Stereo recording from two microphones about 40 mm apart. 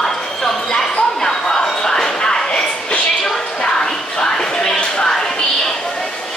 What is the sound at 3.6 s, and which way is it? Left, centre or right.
Music, centre.